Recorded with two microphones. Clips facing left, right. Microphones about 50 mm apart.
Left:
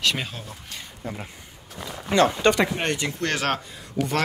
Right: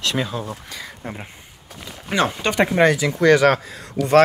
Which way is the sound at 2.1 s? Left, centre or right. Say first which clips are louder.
Left 2 dB; centre.